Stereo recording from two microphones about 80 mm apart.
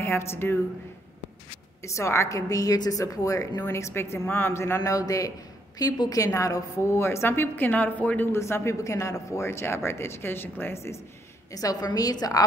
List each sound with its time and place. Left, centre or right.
0.0 s speech: left
1.8 s a woman's voice: left
3.7 s a woman's voice: left
4.7 s a woman's voice: left; by 8.3 s centre
8.3 s a woman's voice: left
11.5 s a woman's voice: left